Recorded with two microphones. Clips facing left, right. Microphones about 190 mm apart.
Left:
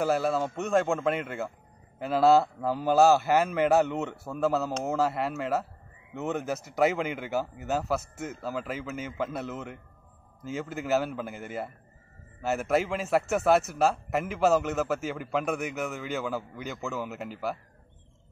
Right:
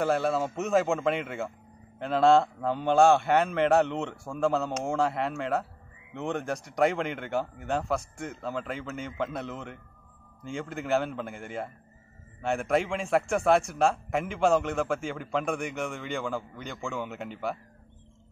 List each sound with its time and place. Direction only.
0.0 s a man's voice: centre (ahead or behind)